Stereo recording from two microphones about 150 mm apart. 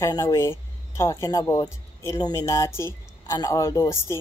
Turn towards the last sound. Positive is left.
turn(degrees=20)  # may be behind; listen again after turning